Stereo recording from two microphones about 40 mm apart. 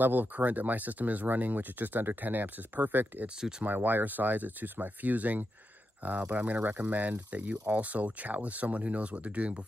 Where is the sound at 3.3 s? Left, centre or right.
Centre.